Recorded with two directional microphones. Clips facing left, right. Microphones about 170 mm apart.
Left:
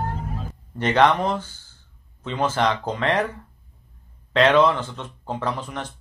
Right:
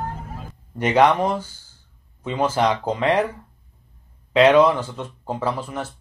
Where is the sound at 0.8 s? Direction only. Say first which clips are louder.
Right 2 dB; 10° right (ahead or behind).